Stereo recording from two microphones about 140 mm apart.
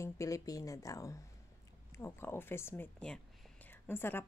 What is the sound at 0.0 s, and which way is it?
Speech, 25° left (ahead or behind).